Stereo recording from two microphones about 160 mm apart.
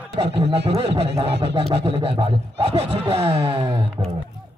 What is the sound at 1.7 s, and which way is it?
Speech, 35° right (ahead or behind).